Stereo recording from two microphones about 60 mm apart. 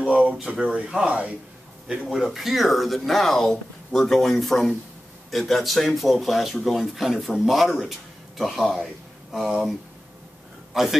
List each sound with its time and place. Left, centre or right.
0.5 s speech: right
1.9 s a man's voice: centre